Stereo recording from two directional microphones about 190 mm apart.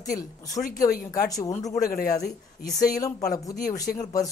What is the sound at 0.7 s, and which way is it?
Speech, 45° left (ahead or behind).